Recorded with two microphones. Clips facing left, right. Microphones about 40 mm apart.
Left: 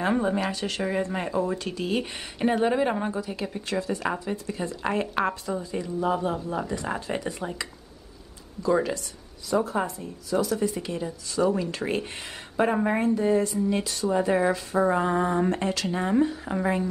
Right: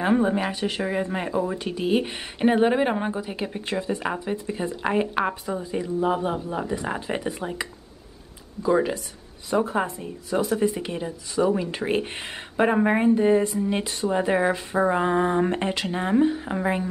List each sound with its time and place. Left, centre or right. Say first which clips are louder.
0.0 s speech: right 3 dB; centre
8.6 s speech: right 2 dB; centre